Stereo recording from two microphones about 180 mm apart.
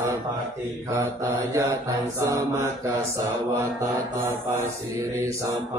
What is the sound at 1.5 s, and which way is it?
Mantra, 15° right (ahead or behind).